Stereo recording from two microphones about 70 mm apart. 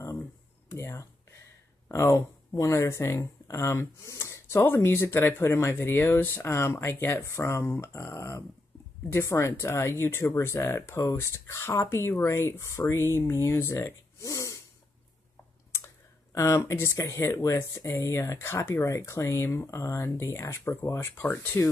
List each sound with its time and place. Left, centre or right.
0.7 s a sound: left
1.9 s speech: left
16.3 s speech: left
20.2 s speech: left